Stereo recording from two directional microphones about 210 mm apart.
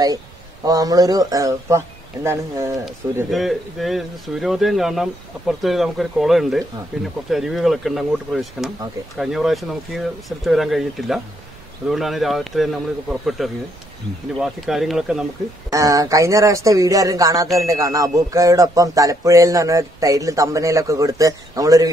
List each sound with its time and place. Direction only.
0.7 s speech: 15° right (ahead or behind)
3.3 s speech: centre (ahead or behind)
15.7 s speech: 15° right (ahead or behind)